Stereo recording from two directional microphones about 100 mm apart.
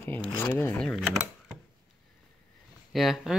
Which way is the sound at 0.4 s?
25° left (ahead or behind).